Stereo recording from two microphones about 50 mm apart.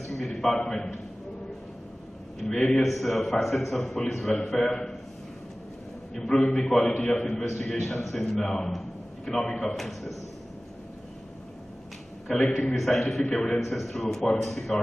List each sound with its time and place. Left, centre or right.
0.0 s a sound: centre
2.5 s a man's voice: centre
2.8 s a man's voice: centre
6.3 s a man's voice: centre
8.7 s a sound: centre
9.8 s a man's voice: centre
12.4 s a man's voice: centre
12.7 s a man's voice: centre
13.7 s a man's voice: centre